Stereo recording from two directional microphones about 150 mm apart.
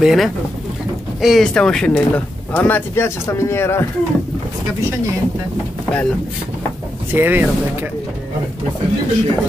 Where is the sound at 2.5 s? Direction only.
15° left (ahead or behind).